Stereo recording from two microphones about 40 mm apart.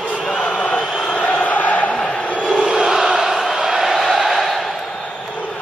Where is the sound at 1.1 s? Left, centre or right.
Left.